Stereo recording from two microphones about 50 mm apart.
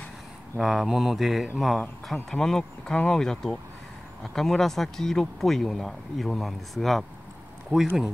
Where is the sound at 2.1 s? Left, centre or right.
Centre.